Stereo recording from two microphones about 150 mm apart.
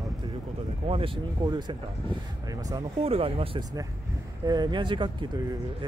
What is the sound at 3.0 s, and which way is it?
Speech, 40° right (ahead or behind).